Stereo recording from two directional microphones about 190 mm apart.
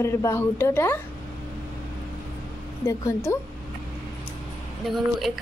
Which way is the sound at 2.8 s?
15° left (ahead or behind).